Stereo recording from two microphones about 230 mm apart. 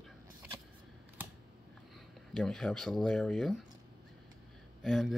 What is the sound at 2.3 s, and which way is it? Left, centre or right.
Speech, centre.